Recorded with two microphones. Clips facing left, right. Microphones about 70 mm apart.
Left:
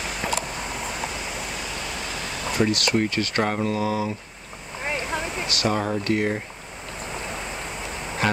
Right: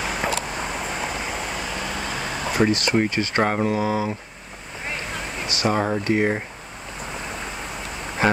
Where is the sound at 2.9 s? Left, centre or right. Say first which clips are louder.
Right 2 dB; right.